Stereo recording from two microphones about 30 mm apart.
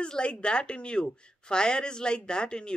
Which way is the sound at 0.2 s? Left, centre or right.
Left.